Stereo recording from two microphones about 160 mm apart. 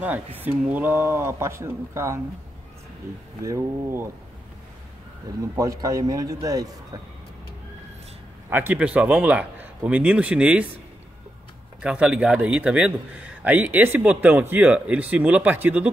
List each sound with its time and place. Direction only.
0.4 s a man's voice: 10° right (ahead or behind)
3.4 s a man's voice: 15° right (ahead or behind)
5.4 s a man's voice: 20° right (ahead or behind)
8.5 s a man's voice: 10° right (ahead or behind)
11.8 s a man's voice: 5° right (ahead or behind)